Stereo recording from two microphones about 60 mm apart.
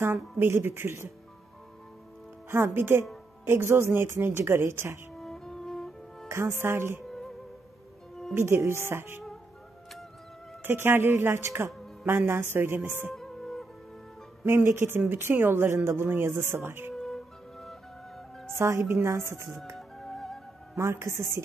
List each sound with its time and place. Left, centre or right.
0.4 s speech: right
2.5 s speech: right
5.1 s music: centre
6.2 s speech: right
8.4 s speech: right
10.6 s speech: right
13.1 s music: centre
14.4 s speech: right
16.9 s music: centre
18.5 s speech: right
20.0 s music: centre
20.7 s speech: right